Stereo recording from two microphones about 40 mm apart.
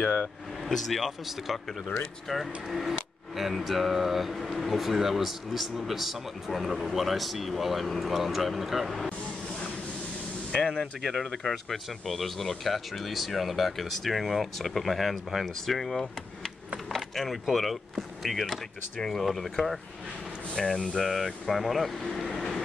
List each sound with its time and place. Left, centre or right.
0.7 s speech: centre
10.5 s speech: left
11.4 s speech: centre
18.9 s speech: centre
21.0 s speech: centre